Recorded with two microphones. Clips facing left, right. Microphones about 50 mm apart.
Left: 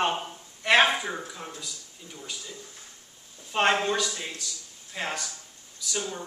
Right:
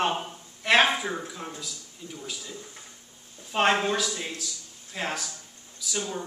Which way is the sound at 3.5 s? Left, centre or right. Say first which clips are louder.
Right 1 dB; centre.